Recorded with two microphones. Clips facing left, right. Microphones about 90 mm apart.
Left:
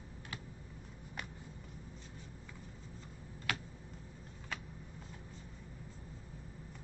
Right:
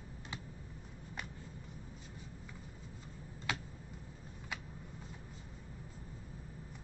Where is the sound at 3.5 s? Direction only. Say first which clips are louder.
Even; 20° right (ahead or behind).